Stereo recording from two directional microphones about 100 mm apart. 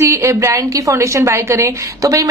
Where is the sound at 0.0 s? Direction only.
30° right (ahead or behind).